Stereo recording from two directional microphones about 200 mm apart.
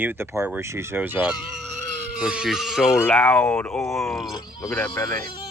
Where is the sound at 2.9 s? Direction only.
10° left (ahead or behind).